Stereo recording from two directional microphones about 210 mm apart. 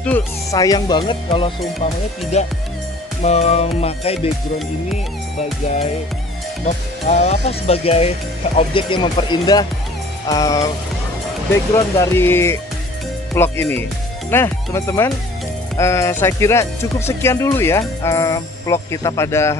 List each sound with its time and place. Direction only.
0.0 s speech: 10° left (ahead or behind); by 2.5 s 30° left (ahead or behind)
3.2 s music: 30° left (ahead or behind)
7.1 s speech: 30° left (ahead or behind)
7.4 s music: 30° left (ahead or behind)
10.2 s speech: 15° left (ahead or behind)
11.7 s speech: 15° left (ahead or behind)